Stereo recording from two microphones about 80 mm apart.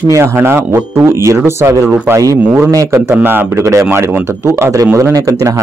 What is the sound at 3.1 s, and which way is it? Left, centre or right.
A woman's voice, right.